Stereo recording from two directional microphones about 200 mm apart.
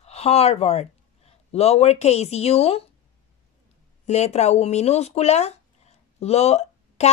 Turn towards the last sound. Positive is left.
turn(degrees=35)  # may be behind; listen again after turning